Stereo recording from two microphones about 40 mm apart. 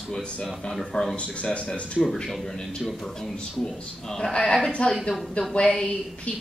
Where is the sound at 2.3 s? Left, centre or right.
Centre.